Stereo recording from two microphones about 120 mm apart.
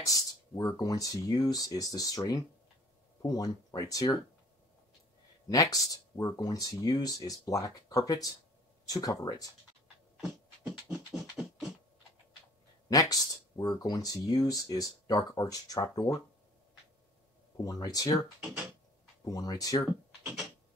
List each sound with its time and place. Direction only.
0.0 s speech: 30° left (ahead or behind)
5.5 s speech: 30° left (ahead or behind)
10.2 s beatboxing: 10° right (ahead or behind)
12.9 s speech: 30° left (ahead or behind)
17.6 s speech: 30° left (ahead or behind)
19.2 s speech: 30° left (ahead or behind)